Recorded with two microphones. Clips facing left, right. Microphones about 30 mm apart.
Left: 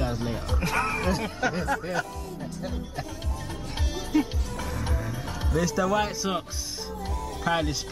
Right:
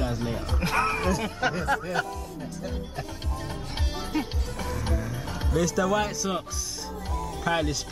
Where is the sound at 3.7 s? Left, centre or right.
Centre.